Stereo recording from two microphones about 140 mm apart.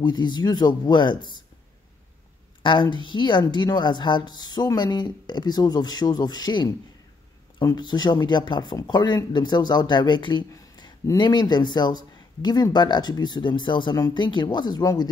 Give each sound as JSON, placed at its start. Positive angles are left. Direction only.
{"t": 0.0, "sound": "speech", "side_deg": 30}
{"t": 2.6, "sound": "speech", "side_deg": 35}